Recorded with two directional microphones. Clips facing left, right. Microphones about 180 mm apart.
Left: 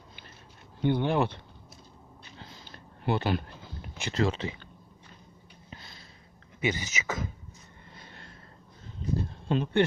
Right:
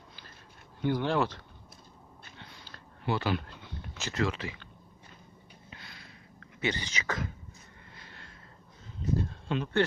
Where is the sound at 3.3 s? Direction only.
35° left (ahead or behind).